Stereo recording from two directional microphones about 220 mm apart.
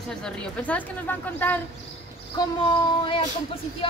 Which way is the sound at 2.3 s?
20° left (ahead or behind).